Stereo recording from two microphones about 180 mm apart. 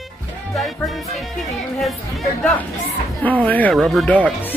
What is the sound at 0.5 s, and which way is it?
Speech, centre (ahead or behind).